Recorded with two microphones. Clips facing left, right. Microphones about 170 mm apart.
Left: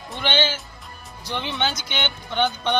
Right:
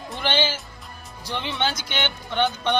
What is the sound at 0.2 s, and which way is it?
Music, centre (ahead or behind).